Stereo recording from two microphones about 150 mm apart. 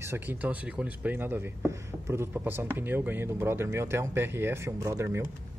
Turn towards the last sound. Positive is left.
turn(degrees=-15)  # may be behind; listen again after turning